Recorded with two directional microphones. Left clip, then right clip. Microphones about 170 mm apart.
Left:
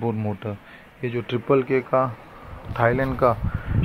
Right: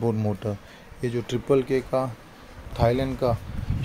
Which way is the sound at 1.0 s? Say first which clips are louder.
Left 1 dB; 25° right (ahead or behind).